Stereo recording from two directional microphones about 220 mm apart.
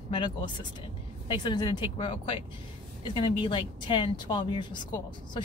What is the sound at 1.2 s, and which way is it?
Speech, 20° left (ahead or behind).